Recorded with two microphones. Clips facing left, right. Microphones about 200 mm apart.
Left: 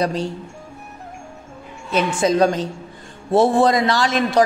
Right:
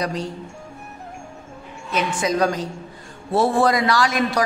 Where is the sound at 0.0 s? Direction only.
30° left (ahead or behind).